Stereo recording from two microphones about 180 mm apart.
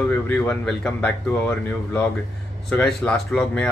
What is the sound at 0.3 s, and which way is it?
Speech, 10° left (ahead or behind).